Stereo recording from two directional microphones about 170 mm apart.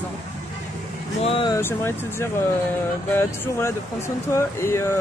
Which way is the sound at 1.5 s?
15° left (ahead or behind).